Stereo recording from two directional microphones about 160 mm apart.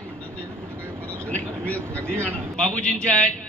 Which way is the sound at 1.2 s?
10° left (ahead or behind).